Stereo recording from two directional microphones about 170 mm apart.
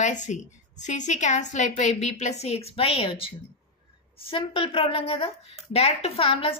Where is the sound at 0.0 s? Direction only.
45° left (ahead or behind).